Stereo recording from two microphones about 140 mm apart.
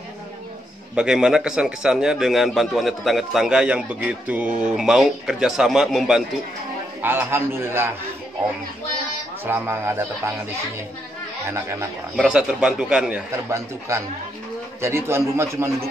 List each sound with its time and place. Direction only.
0.9 s a man's voice: 5° right (ahead or behind)
7.0 s a man's voice: 15° right (ahead or behind)
9.5 s a man's voice: 15° right (ahead or behind)
11.4 s a man's voice: 20° right (ahead or behind)
12.2 s a man's voice: 5° right (ahead or behind)
13.3 s a man's voice: 20° right (ahead or behind)